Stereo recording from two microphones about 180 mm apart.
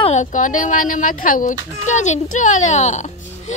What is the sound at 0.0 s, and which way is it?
A child's voice, 40° left (ahead or behind).